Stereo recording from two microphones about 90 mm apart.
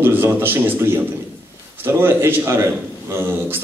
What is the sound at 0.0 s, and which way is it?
A man's voice, 25° right (ahead or behind).